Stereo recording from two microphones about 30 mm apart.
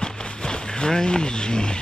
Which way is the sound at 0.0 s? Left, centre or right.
Left.